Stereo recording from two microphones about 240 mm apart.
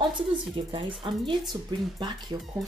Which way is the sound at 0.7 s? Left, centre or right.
Right.